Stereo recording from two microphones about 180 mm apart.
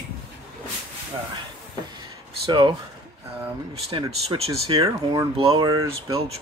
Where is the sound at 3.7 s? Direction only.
30° right (ahead or behind).